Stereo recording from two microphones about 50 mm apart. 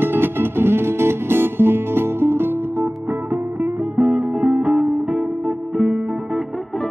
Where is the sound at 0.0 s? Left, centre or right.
Right; by 6.4 s centre.